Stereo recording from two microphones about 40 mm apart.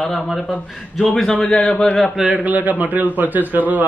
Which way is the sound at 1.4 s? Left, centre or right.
Left.